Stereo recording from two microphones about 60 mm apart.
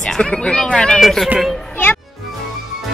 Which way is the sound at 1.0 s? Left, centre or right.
Centre.